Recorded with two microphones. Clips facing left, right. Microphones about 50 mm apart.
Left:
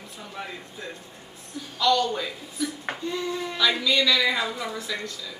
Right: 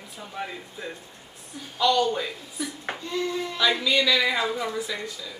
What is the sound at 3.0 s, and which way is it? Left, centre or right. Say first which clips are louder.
Speech: right 1 dB; centre.